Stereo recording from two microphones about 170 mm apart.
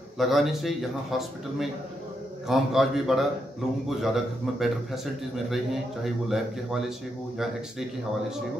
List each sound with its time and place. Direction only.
0.2 s a man's voice: centre (ahead or behind)